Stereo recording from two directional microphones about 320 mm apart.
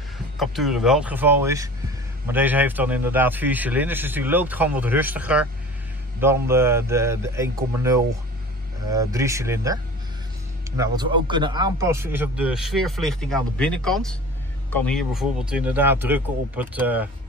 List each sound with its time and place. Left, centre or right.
0.4 s a man's voice: centre
11.2 s a man's voice: centre